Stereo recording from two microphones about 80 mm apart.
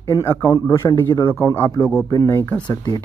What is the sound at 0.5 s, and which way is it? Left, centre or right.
Speech, left.